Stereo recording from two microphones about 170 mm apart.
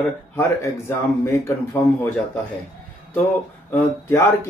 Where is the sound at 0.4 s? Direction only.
15° left (ahead or behind).